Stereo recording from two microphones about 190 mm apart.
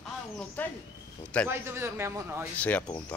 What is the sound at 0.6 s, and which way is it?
Speech, 10° left (ahead or behind).